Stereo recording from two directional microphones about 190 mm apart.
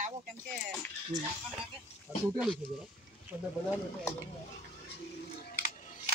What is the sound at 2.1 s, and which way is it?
Speech, 10° right (ahead or behind).